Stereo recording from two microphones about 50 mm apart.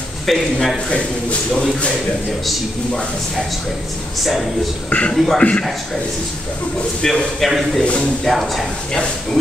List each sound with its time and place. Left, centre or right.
0.3 s speech: centre
4.8 s speech: left
5.1 s speech: centre
5.4 s speech: left
7.0 s speech: centre
7.8 s speech: left
8.3 s speech: centre